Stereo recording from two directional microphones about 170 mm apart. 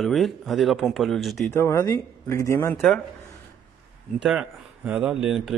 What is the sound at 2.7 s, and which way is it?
Speech, centre (ahead or behind).